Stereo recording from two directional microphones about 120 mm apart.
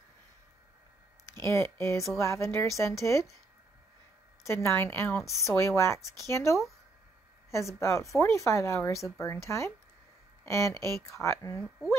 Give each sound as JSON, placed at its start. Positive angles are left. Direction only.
{"t": 1.5, "sound": "speech", "side_deg": 25}
{"t": 4.5, "sound": "speech", "side_deg": 25}